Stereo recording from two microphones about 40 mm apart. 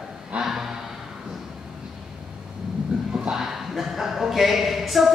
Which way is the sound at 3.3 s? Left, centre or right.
Centre.